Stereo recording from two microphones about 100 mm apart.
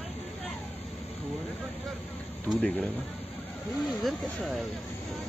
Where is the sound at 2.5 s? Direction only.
10° left (ahead or behind).